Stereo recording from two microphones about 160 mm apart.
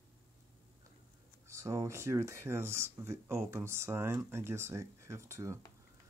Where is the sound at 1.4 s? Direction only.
20° right (ahead or behind).